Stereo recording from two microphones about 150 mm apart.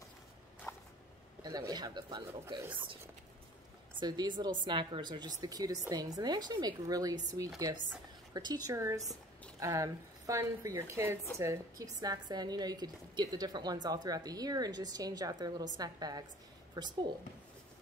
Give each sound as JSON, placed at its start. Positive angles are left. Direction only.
{"t": 0.7, "sound": "a sound", "side_deg": 20}
{"t": 1.6, "sound": "a woman's voice", "side_deg": -25}
{"t": 4.0, "sound": "a woman's voice", "side_deg": -30}